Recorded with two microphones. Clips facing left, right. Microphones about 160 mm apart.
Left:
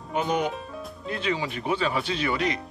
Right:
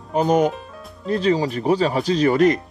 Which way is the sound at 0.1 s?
40° right (ahead or behind).